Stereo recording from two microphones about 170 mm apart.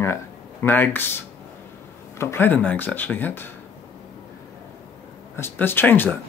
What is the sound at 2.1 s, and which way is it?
Speech, 15° left (ahead or behind).